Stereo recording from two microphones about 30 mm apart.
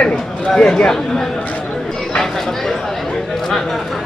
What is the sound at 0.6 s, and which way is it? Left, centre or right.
A man's voice, left.